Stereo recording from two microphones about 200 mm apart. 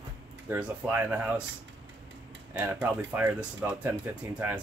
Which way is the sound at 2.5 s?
10° right (ahead or behind).